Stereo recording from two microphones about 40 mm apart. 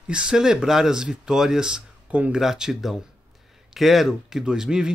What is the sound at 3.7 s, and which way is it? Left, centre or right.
Speech, centre.